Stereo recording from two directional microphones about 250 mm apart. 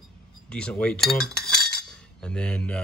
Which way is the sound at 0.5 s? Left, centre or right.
Centre.